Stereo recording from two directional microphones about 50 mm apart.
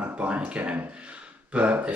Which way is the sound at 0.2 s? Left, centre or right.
Right.